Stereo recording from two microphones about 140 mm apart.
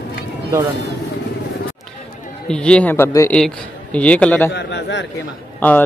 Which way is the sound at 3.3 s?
5° left (ahead or behind).